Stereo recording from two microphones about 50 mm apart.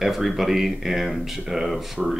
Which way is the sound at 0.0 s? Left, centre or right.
Centre.